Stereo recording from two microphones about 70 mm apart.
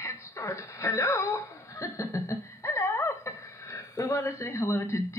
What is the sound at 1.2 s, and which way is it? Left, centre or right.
Laughter, left.